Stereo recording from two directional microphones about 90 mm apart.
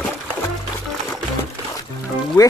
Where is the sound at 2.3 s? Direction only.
40° left (ahead or behind).